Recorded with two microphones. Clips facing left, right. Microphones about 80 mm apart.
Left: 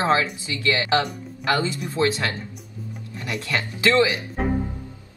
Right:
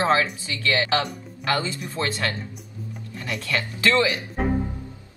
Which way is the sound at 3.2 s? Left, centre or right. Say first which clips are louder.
Left 1 dB; left.